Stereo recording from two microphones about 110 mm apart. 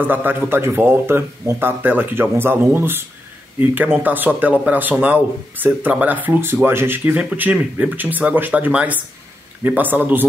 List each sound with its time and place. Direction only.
0.0 s speech: 15° right (ahead or behind)